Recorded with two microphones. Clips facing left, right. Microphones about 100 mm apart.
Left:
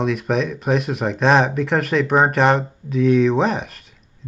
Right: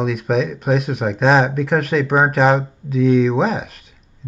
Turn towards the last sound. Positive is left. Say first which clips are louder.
# right 1 dB
turn(degrees=0)  # may be behind; listen again after turning